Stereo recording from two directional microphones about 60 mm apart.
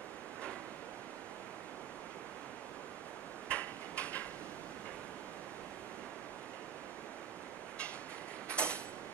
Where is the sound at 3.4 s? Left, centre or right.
Left.